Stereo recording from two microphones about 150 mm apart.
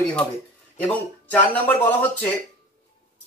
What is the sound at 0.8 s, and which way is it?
Speech, 10° left (ahead or behind).